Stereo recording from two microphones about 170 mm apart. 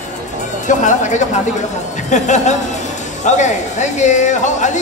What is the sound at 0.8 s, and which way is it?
Speech, 45° left (ahead or behind).